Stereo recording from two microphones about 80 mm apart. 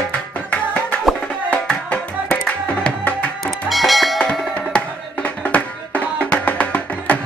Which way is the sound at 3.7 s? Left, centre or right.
Centre.